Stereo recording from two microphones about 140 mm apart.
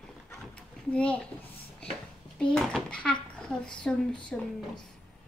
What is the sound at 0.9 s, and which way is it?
Speech, 10° left (ahead or behind).